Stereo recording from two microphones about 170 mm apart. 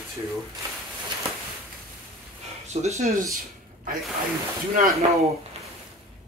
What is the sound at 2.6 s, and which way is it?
Speech, 40° right (ahead or behind).